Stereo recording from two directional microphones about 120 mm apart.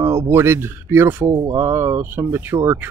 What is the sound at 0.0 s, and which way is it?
Speech, 20° right (ahead or behind).